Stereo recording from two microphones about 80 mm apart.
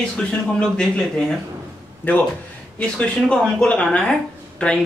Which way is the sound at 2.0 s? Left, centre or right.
Left.